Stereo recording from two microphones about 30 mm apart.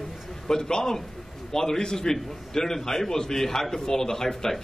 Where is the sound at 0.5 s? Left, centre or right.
Left.